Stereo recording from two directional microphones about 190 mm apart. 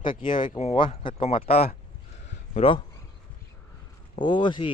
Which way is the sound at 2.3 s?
30° left (ahead or behind).